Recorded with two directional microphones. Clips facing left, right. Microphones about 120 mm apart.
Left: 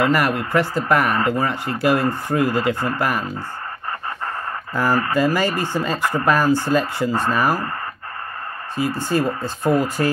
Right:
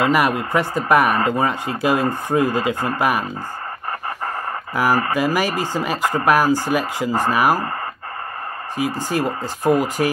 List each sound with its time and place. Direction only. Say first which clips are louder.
0.0 s speech: right 1 dB; 15° right (ahead or behind)
4.7 s speech: even; 10° right (ahead or behind)
8.7 s speech: left 1 dB; 15° right (ahead or behind)